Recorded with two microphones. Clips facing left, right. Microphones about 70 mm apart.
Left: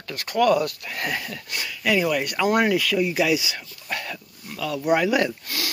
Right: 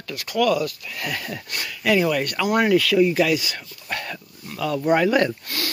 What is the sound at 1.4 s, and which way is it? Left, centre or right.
Speech, centre.